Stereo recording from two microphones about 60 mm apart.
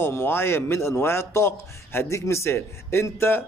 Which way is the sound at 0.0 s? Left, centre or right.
Left.